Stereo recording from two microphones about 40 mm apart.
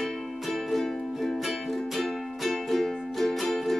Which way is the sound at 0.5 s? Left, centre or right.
Centre.